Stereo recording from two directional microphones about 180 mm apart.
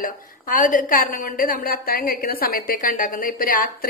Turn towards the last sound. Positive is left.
turn(degrees=50)  # may be behind; listen again after turning